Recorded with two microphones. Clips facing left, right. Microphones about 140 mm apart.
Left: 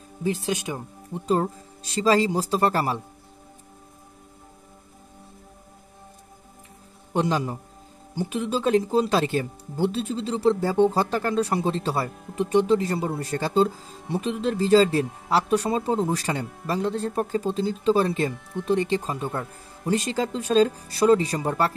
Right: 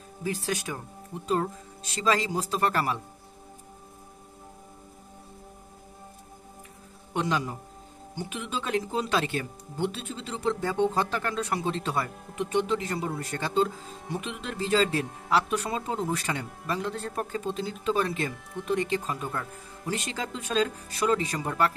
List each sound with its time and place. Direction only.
0.2 s speech: 20° left (ahead or behind)
1.2 s speech: 30° left (ahead or behind)
7.2 s speech: 35° left (ahead or behind)
18.3 s speech: centre (ahead or behind)
18.7 s speech: 30° left (ahead or behind)